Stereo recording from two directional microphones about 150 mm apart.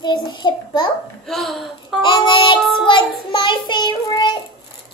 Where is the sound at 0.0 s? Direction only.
30° left (ahead or behind).